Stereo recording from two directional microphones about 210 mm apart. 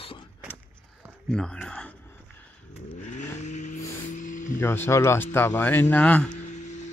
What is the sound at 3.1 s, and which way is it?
Vehicle, 35° left (ahead or behind).